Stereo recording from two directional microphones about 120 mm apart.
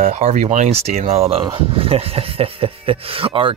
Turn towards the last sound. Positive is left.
turn(degrees=-50)  # may be behind; listen again after turning